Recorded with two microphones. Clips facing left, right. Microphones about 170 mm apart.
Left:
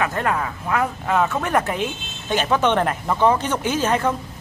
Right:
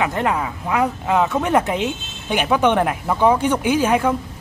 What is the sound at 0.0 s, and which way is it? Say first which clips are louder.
Speech: right 2 dB; 20° right (ahead or behind).